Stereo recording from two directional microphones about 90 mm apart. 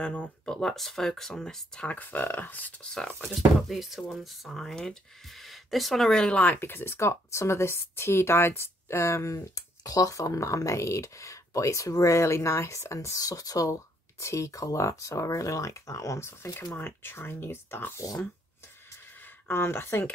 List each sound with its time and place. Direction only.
0.0 s speech: 10° left (ahead or behind)
19.4 s speech: 25° left (ahead or behind)